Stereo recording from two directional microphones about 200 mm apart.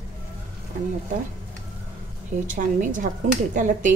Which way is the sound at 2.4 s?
40° right (ahead or behind).